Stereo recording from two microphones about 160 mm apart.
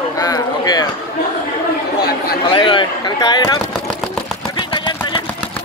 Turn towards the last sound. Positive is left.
turn(degrees=30)  # may be behind; listen again after turning